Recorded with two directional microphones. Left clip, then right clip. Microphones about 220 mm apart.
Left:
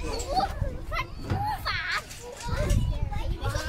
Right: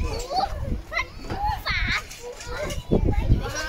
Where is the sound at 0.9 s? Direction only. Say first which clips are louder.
Right 5 dB; 45° left (ahead or behind).